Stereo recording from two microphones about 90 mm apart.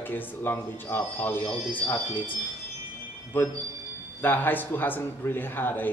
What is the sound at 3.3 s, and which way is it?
A man's voice, 20° left (ahead or behind).